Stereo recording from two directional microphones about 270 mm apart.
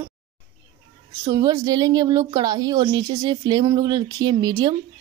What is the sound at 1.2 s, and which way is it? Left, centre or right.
A woman's voice, centre.